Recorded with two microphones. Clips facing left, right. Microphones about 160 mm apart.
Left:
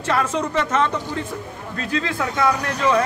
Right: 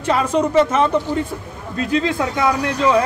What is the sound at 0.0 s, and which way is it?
Speech, 15° right (ahead or behind).